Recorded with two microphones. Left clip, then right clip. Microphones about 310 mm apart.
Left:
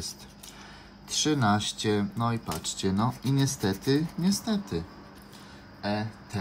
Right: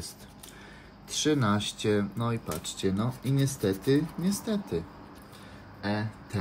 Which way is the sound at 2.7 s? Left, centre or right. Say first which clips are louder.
Left 2 dB; centre.